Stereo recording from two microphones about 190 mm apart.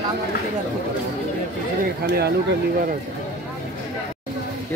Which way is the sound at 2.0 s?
60° right (ahead or behind).